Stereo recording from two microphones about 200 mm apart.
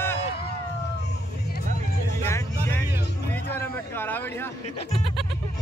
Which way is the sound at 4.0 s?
10° left (ahead or behind).